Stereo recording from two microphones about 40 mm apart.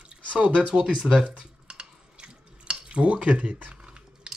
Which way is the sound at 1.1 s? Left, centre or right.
Centre.